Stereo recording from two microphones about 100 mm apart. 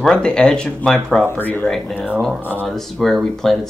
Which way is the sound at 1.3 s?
20° left (ahead or behind).